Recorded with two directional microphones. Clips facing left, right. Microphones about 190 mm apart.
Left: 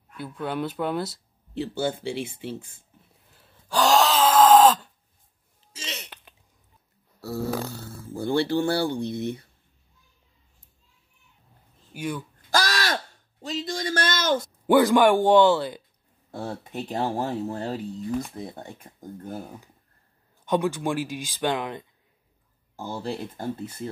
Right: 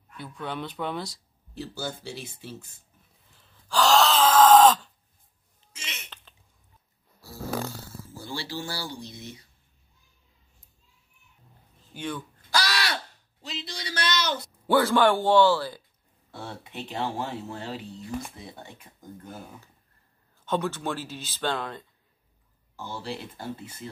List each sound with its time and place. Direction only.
0.2 s speech: 5° left (ahead or behind)
1.8 s speech: 25° left (ahead or behind)
3.6 s gasp: 20° left (ahead or behind)
4.0 s wail: 5° left (ahead or behind)
5.8 s throat clearing: 35° left (ahead or behind)
7.2 s speech: 65° left (ahead or behind)
11.9 s speech: 10° left (ahead or behind)
12.4 s crow: 45° left (ahead or behind)
14.7 s speech: 15° left (ahead or behind)
16.3 s speech: 45° left (ahead or behind)
18.9 s speech: 40° left (ahead or behind)
20.4 s speech: 15° left (ahead or behind)
22.8 s speech: 45° left (ahead or behind)